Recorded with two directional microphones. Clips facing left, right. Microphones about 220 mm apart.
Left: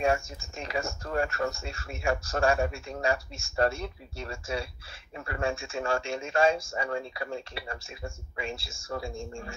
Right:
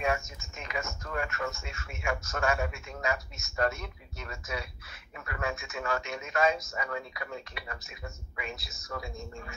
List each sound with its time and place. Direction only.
0.0 s speech: 30° left (ahead or behind)